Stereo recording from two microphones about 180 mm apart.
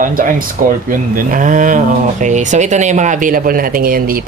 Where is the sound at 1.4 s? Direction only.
45° right (ahead or behind).